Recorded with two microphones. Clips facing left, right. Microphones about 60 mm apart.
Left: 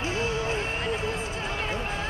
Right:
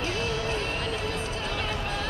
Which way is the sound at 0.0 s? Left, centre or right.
Left.